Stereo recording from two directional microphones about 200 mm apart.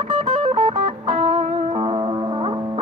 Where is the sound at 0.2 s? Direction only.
30° right (ahead or behind).